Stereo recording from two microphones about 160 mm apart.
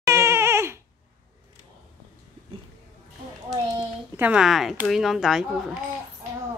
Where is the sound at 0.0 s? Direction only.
15° right (ahead or behind).